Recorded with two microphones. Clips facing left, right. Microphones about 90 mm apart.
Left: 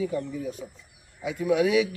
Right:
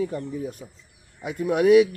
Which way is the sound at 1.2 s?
50° right (ahead or behind).